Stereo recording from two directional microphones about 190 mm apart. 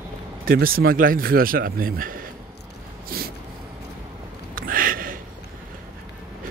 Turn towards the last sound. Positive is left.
turn(degrees=-50)  # may be behind; listen again after turning